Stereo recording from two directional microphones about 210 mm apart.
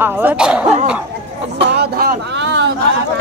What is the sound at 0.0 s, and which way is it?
Speech, 10° right (ahead or behind).